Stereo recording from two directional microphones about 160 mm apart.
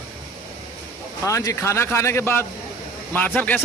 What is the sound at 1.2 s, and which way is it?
Speech, 20° left (ahead or behind).